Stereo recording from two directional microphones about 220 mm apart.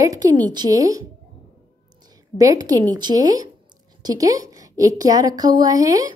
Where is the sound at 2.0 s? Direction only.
15° right (ahead or behind).